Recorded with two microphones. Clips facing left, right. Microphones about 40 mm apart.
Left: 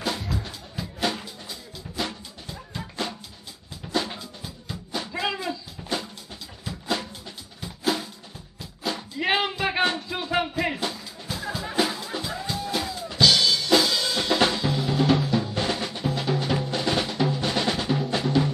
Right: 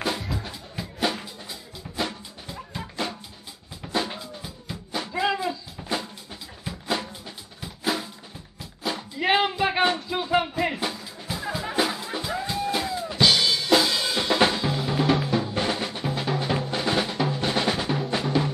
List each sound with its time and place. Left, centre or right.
0.0 s music: centre
0.7 s drum: centre
3.9 s drum: centre
4.4 s music: centre
6.6 s drum: centre
8.5 s music: centre
12.7 s drum kit: centre
17.0 s drum: centre